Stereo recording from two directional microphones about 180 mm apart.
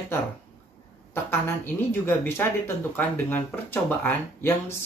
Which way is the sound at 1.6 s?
10° left (ahead or behind).